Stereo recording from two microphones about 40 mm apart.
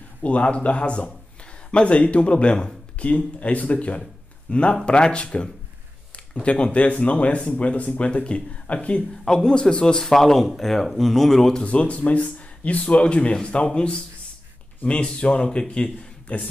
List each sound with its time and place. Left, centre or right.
0.2 s speech: left
3.0 s speech: left
9.2 s speech: centre
10.0 s speech: centre
11.6 s speech: left